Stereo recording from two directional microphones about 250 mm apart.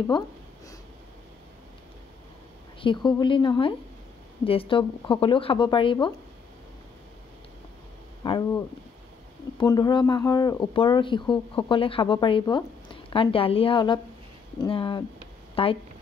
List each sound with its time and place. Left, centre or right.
2.8 s speech: centre
8.2 s speech: centre